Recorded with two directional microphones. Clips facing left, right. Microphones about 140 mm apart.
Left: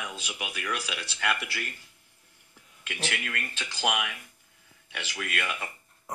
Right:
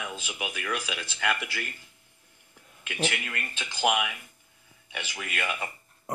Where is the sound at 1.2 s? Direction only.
5° left (ahead or behind).